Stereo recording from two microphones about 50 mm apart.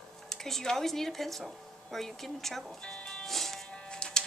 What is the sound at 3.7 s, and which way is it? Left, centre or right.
Music, centre.